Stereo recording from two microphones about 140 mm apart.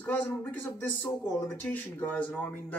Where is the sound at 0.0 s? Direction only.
10° left (ahead or behind).